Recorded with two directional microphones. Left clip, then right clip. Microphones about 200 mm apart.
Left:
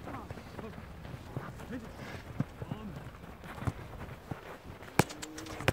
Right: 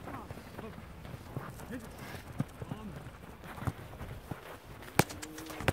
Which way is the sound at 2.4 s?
45° right (ahead or behind).